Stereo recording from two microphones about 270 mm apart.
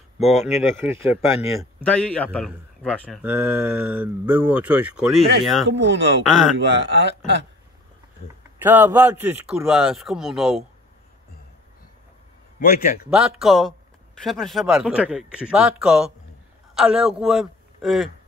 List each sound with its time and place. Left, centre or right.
0.2 s a man's voice: centre
1.8 s a man's voice: centre
5.7 s speech: right
8.2 s speech: left
8.6 s a man's voice: centre
12.5 s a man's voice: left
13.1 s a man's voice: centre